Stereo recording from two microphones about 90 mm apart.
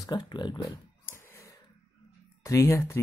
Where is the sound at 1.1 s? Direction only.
30° left (ahead or behind).